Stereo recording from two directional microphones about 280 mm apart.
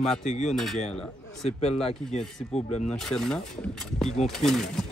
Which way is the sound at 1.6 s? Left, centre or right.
Left.